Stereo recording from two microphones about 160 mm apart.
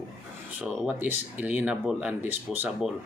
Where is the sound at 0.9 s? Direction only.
15° right (ahead or behind).